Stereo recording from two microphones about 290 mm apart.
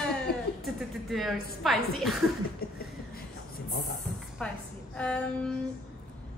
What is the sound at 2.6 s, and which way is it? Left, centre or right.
Speech, left.